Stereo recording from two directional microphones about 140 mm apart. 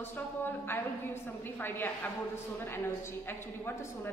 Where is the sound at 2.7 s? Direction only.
15° left (ahead or behind).